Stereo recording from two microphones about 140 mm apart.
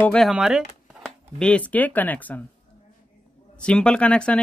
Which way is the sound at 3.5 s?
5° left (ahead or behind).